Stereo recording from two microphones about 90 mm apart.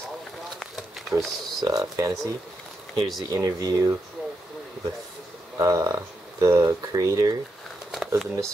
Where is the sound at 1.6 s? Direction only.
40° right (ahead or behind).